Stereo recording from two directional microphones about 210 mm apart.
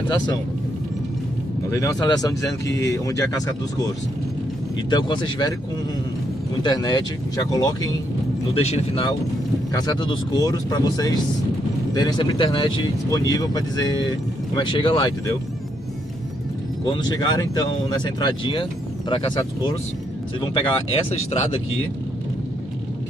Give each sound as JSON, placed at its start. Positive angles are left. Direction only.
{"t": 1.7, "sound": "speech", "side_deg": 15}
{"t": 6.6, "sound": "speech", "side_deg": 20}
{"t": 8.5, "sound": "speech", "side_deg": 30}
{"t": 16.8, "sound": "speech", "side_deg": 20}